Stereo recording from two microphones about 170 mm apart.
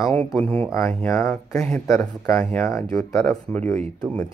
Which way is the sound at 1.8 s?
20° left (ahead or behind).